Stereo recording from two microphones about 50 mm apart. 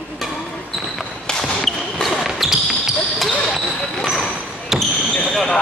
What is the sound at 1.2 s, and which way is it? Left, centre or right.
Basketball bounce, centre.